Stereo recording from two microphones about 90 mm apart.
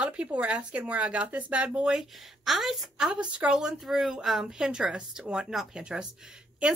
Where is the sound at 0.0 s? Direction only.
15° right (ahead or behind).